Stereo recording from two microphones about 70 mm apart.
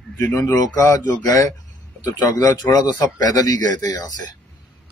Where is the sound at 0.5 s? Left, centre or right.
Left.